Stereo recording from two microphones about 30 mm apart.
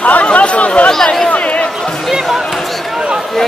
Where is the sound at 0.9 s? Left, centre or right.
Centre.